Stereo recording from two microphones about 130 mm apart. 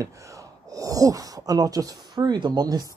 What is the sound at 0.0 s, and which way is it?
Speech, 25° right (ahead or behind).